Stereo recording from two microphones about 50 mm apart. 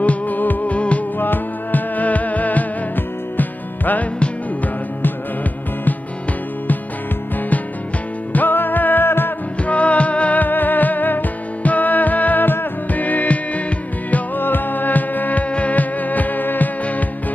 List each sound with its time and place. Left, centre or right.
0.0 s music: left
1.1 s music: left
8.3 s music: left
9.6 s music: left